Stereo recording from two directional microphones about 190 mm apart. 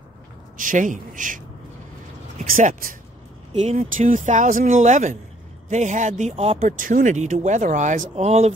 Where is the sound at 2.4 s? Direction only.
40° right (ahead or behind).